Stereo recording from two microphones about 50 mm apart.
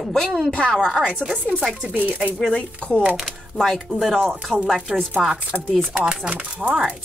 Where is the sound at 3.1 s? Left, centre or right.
Centre.